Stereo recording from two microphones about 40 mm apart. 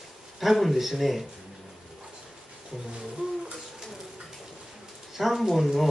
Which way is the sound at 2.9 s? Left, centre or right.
Centre.